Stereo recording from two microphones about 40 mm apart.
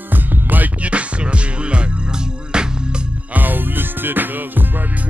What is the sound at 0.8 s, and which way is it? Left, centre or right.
Music, right.